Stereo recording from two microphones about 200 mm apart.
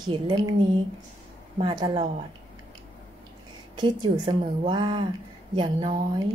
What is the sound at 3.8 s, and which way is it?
A woman's voice, 25° right (ahead or behind).